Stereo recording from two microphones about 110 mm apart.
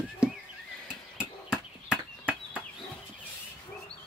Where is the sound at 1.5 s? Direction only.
10° right (ahead or behind).